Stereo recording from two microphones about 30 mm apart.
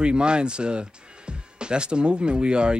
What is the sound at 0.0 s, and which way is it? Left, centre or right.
Speech, right.